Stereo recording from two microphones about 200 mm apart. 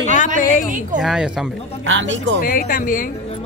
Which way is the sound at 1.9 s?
65° right (ahead or behind).